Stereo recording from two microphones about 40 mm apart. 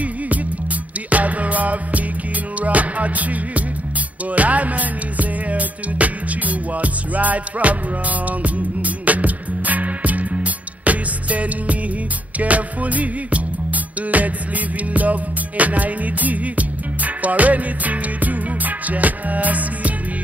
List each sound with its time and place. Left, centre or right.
1.1 s music: right
15.0 s music: right